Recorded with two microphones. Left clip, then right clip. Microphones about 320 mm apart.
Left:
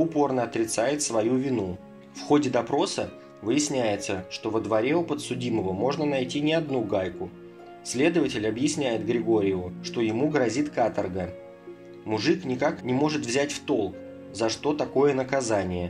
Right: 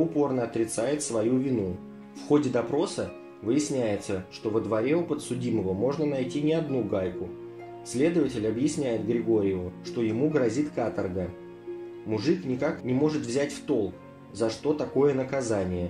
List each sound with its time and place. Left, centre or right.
0.1 s speech: left
12.1 s speech: left